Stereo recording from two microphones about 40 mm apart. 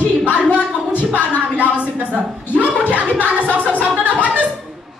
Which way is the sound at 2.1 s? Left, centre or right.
Right.